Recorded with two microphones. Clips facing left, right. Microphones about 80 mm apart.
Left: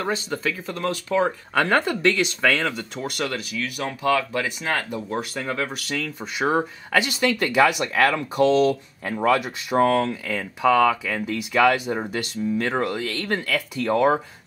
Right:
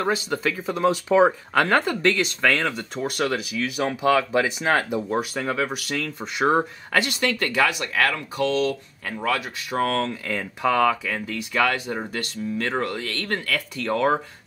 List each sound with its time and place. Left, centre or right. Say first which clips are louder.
0.0 s speech: right 2 dB; centre
1.5 s speech: even; centre
11.2 s speech: left 5 dB; centre